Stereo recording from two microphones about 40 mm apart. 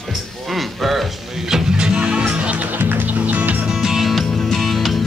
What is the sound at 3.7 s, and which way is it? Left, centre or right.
Music, centre.